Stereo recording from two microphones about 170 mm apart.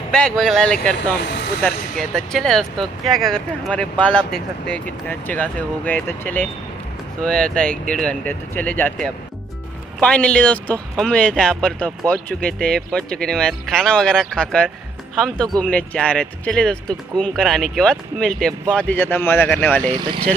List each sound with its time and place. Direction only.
0.1 s speech: 5° left (ahead or behind)
9.9 s speech: 5° left (ahead or behind)
19.8 s speech: 25° right (ahead or behind)